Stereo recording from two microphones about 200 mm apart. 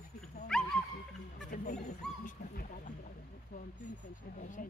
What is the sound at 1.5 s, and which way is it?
Speech, 40° left (ahead or behind).